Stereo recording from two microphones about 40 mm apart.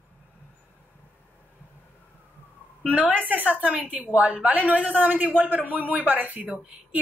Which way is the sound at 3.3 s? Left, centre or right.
Right.